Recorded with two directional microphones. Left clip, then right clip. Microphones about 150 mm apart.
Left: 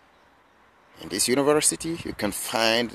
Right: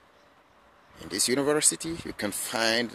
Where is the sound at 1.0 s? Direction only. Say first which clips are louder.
Left 3 dB; 20° left (ahead or behind).